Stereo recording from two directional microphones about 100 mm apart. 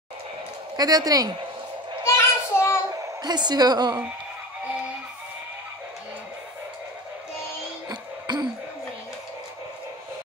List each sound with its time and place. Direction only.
0.7 s a woman's voice: 40° right (ahead or behind)
2.0 s children playing: 25° left (ahead or behind)
3.2 s a woman's voice: 45° right (ahead or behind)
7.9 s music: 45° right (ahead or behind)